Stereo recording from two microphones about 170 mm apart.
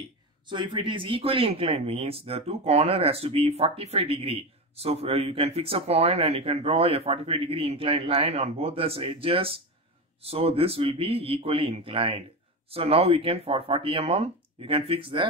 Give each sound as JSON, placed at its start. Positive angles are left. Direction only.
{"t": 0.5, "sound": "speech", "side_deg": -30}